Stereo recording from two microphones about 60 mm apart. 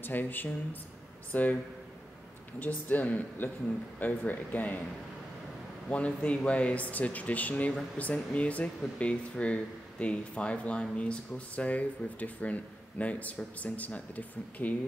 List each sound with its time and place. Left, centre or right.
0.0 s speech: left
2.6 s speech: left
5.9 s speech: left